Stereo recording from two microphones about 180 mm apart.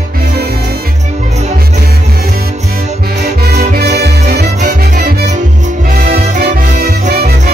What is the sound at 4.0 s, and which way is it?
Music, 65° right (ahead or behind).